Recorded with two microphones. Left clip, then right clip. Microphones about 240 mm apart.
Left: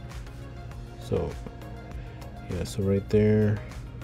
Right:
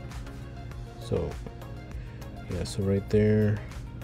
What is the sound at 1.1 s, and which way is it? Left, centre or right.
Speech, centre.